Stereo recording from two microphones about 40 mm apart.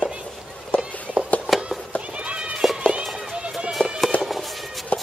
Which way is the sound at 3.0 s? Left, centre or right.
Centre.